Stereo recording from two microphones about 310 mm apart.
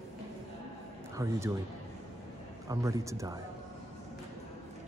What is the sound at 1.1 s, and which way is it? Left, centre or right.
Speech, centre.